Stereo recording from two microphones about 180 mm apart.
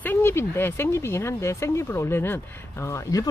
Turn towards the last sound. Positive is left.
turn(degrees=20)  # may be behind; listen again after turning